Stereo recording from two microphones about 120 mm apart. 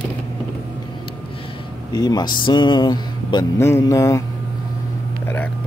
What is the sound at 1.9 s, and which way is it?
Speech, 35° left (ahead or behind).